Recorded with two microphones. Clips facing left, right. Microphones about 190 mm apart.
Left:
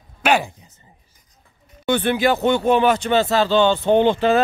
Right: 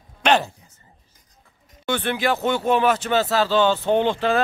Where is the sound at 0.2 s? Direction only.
10° left (ahead or behind).